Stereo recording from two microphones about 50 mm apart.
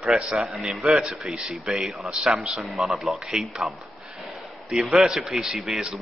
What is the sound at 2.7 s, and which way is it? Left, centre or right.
A man's voice, centre.